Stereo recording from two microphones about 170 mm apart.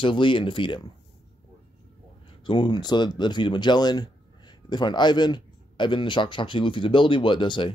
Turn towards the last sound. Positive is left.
turn(degrees=30)  # may be behind; listen again after turning